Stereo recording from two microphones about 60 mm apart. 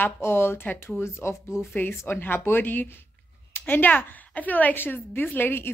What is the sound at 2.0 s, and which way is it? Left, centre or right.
A woman's voice, left.